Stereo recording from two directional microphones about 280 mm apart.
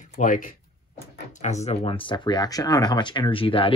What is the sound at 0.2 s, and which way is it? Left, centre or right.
Speech, left.